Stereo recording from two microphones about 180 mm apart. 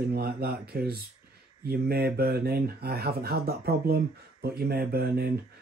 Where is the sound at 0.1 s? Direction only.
60° right (ahead or behind).